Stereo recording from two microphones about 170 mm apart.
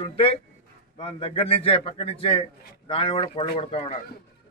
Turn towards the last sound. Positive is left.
turn(degrees=35)  # may be behind; listen again after turning